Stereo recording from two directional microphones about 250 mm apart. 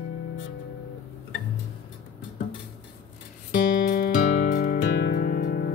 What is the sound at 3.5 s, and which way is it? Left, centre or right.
Music, left.